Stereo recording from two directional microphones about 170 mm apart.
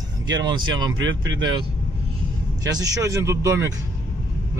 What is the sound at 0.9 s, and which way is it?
Speech, 90° right.